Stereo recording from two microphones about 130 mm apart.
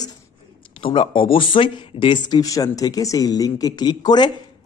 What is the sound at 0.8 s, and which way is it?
Speech, 45° left (ahead or behind).